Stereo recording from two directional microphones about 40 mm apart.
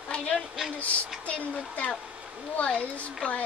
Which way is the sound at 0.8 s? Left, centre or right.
Left.